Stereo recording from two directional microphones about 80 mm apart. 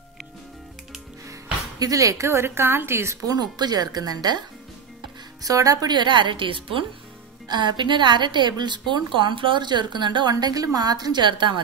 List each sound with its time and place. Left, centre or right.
1.8 s a woman's voice: right
3.3 s a woman's voice: right
5.4 s speech: right
5.9 s a woman's voice: right
7.4 s a woman's voice: right
10.3 s a woman's voice: right